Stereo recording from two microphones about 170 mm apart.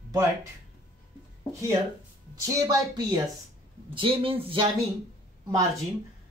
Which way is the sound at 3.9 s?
30° right (ahead or behind).